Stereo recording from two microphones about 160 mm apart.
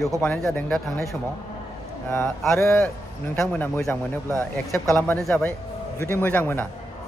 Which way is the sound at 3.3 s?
5° left (ahead or behind).